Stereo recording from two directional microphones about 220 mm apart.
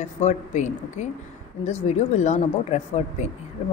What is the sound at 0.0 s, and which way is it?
A woman's voice, 30° left (ahead or behind).